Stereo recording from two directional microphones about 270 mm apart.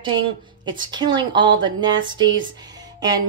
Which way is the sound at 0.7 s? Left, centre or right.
Centre.